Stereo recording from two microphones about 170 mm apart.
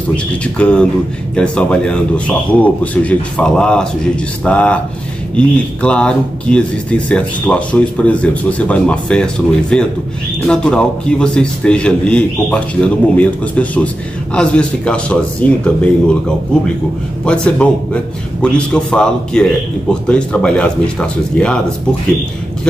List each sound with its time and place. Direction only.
0.1 s a man's voice: 5° left (ahead or behind)
17.2 s a man's voice: 5° left (ahead or behind)